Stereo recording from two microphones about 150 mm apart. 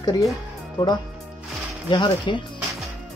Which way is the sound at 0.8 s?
25° left (ahead or behind).